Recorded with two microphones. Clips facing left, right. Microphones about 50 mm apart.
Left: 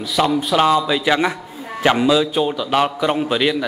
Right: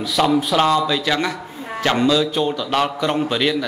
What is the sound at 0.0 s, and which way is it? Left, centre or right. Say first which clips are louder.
Speech: right 1 dB; centre.